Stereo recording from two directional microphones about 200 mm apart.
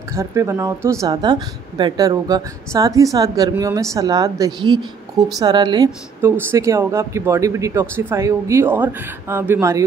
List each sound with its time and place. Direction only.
0.1 s speech: 15° right (ahead or behind)